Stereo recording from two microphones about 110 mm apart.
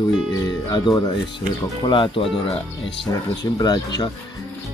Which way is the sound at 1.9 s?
55° left (ahead or behind).